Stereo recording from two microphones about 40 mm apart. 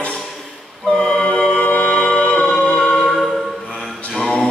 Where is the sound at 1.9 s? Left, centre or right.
Centre.